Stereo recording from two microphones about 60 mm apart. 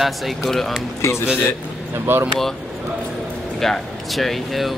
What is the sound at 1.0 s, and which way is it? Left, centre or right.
Speech, left.